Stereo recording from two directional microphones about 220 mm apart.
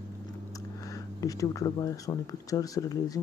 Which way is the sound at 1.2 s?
15° left (ahead or behind).